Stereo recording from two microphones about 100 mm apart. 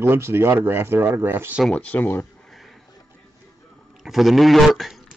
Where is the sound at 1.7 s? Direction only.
15° left (ahead or behind).